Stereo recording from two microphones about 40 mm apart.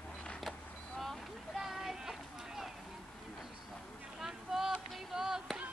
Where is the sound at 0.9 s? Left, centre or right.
Centre.